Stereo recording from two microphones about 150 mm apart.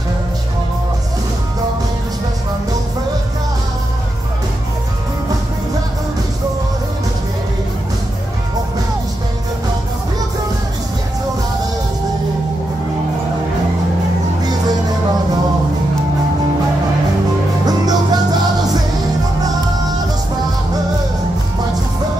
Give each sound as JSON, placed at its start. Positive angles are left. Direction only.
{"t": 17.6, "sound": "music", "side_deg": -25}